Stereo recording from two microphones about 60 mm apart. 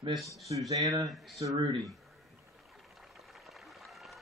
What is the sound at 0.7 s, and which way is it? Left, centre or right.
Speech, right.